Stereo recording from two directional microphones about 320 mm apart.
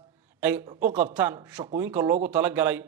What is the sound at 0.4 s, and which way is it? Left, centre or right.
Speech, centre.